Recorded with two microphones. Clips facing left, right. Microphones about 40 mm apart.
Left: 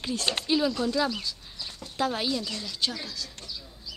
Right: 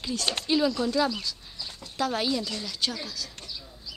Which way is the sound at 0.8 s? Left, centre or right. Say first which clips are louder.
Right 1 dB; centre.